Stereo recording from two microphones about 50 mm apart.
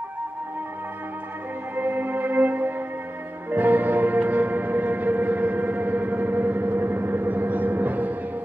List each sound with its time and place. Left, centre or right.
1.8 s music: right